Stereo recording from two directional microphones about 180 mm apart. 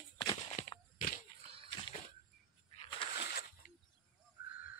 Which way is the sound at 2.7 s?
30° left (ahead or behind).